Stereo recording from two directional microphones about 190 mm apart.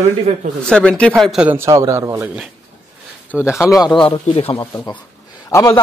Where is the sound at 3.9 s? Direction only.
25° left (ahead or behind).